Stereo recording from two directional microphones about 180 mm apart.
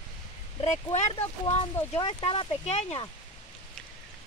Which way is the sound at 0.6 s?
40° left (ahead or behind).